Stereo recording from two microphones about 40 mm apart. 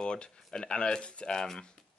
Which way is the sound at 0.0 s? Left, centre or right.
Left.